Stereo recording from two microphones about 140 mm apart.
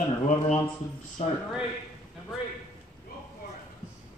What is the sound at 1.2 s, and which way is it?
Speech, 50° left (ahead or behind).